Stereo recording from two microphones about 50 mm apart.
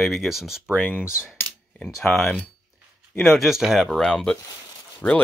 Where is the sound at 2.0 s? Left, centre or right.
Left.